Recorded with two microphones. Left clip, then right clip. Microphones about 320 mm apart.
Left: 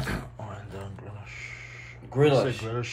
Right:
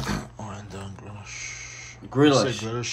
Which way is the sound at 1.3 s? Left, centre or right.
Centre.